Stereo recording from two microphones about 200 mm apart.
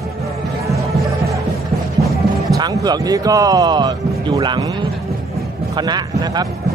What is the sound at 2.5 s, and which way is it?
Speech, 20° right (ahead or behind).